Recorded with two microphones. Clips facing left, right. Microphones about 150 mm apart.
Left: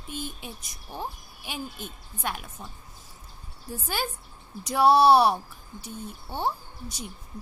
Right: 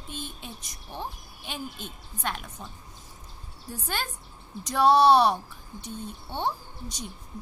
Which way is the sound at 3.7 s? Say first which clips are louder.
Left 2 dB; 10° left (ahead or behind).